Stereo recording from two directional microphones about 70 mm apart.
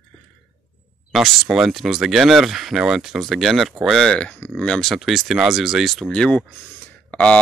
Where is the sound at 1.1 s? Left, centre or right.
Centre.